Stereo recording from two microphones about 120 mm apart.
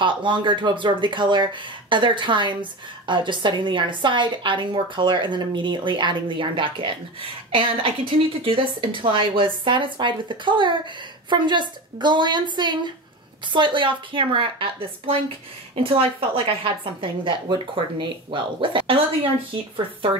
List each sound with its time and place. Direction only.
0.0 s a woman's voice: 45° right (ahead or behind)